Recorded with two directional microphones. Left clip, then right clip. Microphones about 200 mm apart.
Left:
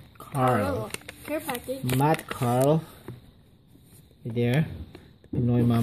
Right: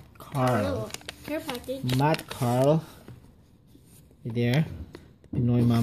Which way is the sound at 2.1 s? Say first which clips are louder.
Left 1 dB; 5° right (ahead or behind).